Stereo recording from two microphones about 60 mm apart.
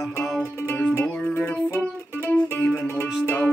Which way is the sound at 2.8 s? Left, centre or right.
Left.